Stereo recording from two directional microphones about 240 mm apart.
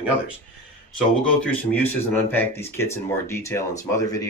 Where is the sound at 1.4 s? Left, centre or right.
Centre.